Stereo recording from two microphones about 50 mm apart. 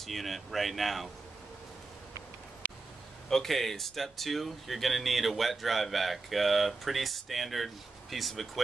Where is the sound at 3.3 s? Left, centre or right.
Centre.